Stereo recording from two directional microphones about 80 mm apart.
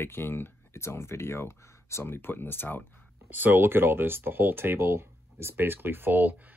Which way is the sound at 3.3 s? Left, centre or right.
Right.